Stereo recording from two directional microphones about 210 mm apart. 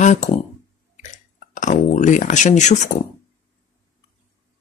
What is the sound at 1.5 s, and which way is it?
Speech, 35° left (ahead or behind).